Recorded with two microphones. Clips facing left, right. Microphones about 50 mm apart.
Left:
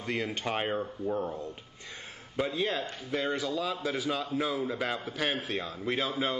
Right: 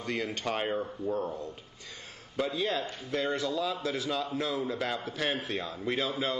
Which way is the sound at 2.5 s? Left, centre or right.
Centre.